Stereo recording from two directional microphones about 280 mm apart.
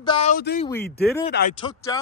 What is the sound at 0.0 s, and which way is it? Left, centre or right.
Speech, centre.